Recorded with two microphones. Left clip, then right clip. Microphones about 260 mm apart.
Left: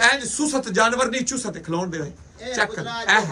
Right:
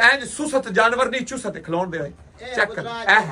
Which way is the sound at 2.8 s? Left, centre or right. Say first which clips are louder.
Even; right.